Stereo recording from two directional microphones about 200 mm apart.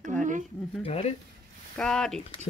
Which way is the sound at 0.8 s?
30° left (ahead or behind).